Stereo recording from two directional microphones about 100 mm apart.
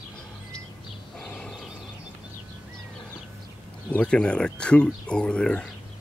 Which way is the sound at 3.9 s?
10° left (ahead or behind).